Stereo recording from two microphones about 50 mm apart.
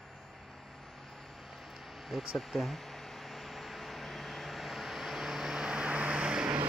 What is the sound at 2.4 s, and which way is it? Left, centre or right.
Vehicle, centre.